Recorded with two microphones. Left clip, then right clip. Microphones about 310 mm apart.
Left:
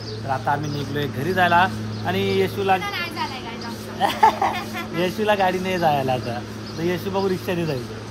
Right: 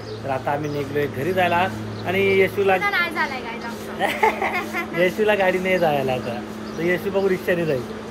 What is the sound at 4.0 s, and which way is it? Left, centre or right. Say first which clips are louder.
Speech: left 3 dB; centre.